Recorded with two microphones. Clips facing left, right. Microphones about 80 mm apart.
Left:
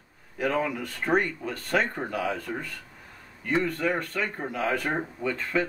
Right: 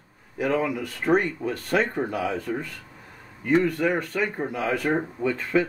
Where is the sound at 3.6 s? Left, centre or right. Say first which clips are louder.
Right 4 dB; centre.